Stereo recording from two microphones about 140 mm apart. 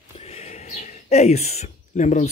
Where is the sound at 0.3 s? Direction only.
50° left (ahead or behind).